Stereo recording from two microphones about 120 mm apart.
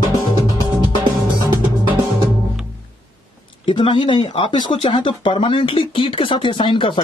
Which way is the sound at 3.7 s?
45° left (ahead or behind).